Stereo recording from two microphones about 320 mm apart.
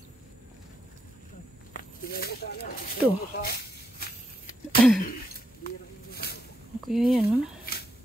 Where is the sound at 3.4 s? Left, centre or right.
Left.